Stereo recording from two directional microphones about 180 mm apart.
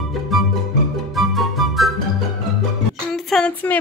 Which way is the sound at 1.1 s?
Centre (ahead or behind).